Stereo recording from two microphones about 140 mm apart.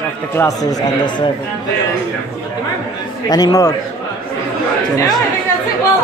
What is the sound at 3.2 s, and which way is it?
Speech, 30° left (ahead or behind).